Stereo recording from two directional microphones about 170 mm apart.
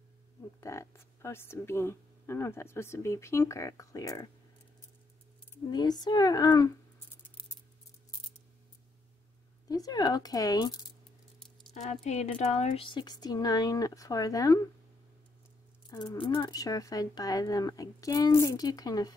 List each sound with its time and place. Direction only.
0.6 s speech: 15° left (ahead or behind)
5.5 s speech: 25° left (ahead or behind)
9.7 s speech: 20° left (ahead or behind)
11.3 s a sound: centre (ahead or behind)
11.7 s speech: 40° left (ahead or behind); by 14.6 s 20° left (ahead or behind)
15.9 s speech: 25° left (ahead or behind)